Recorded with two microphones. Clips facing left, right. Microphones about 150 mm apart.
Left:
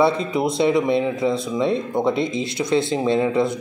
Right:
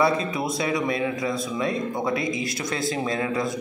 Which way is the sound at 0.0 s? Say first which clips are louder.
Left 4 dB; 25° left (ahead or behind).